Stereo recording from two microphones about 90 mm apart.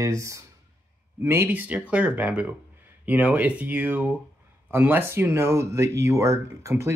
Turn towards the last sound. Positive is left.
turn(degrees=-35)  # may be behind; listen again after turning